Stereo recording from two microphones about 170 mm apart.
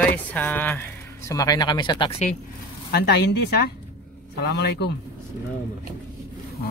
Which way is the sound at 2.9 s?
70° left (ahead or behind).